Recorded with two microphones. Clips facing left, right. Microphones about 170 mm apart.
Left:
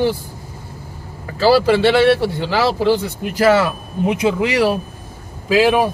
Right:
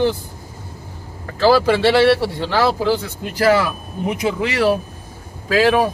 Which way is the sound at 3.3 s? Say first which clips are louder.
Left 2 dB; 20° left (ahead or behind).